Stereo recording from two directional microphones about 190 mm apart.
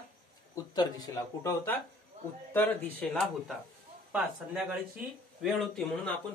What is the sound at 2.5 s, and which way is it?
Speech, 10° left (ahead or behind).